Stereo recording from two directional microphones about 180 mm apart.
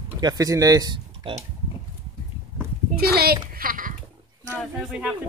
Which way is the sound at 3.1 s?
60° right (ahead or behind).